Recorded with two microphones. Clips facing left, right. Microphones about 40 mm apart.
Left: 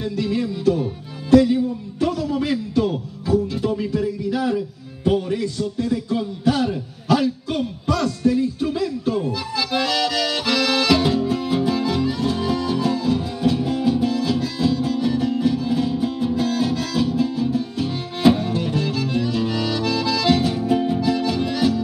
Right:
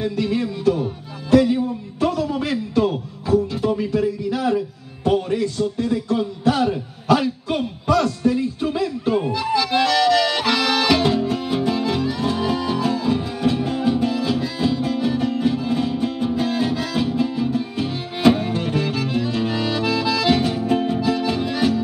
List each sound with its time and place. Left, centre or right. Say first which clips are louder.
0.0 s music: right 1 dB; centre
5.6 s a sound: right 1 dB; centre
9.6 s accordion: right 3 dB; centre
16.8 s music: even; centre
20.9 s accordion: even; centre